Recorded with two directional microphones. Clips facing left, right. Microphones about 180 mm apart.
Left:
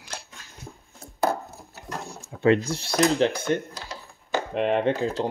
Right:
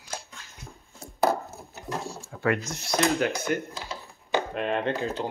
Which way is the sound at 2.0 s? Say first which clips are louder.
Left 7 dB; 20° left (ahead or behind).